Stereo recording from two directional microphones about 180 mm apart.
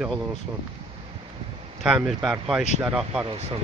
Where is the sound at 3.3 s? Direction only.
30° right (ahead or behind).